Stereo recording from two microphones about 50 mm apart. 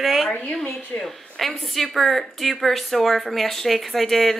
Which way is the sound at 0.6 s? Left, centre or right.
Centre.